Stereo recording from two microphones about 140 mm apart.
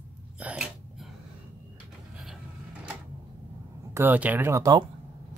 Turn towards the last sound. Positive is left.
turn(degrees=-20)  # may be behind; listen again after turning